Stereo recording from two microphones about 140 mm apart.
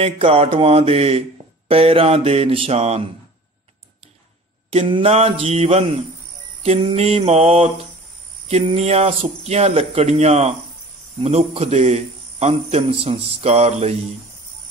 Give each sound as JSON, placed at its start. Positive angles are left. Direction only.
{"t": 0.0, "sound": "a man's voice", "side_deg": -45}
{"t": 4.6, "sound": "a man's voice", "side_deg": -40}